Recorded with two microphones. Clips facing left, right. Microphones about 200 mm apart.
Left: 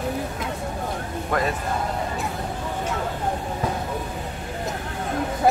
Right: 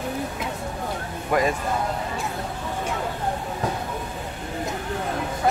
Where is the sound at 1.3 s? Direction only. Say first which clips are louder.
Right 3 dB; 10° right (ahead or behind).